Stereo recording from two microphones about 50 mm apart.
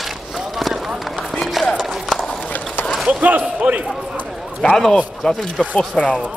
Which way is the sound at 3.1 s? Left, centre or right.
Right.